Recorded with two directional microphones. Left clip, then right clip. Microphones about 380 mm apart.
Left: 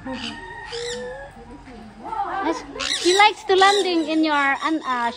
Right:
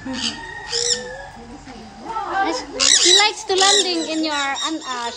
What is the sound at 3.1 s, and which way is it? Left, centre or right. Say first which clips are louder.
A child's voice: even; centre.